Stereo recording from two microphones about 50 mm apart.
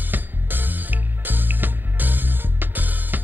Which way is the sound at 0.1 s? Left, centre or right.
Right.